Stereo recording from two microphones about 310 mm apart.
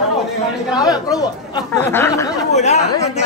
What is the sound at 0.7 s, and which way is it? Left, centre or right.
Speech, centre.